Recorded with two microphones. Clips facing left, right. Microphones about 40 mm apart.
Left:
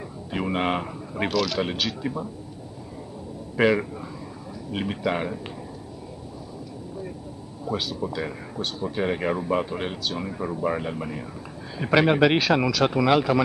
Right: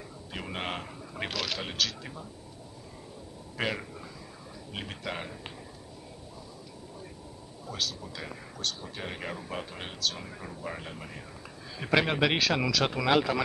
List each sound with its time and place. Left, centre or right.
0.3 s speech: left
1.3 s speech: centre
1.6 s speech: centre
3.5 s speech: left
7.7 s speech: centre
10.4 s speech: left
11.8 s speech: centre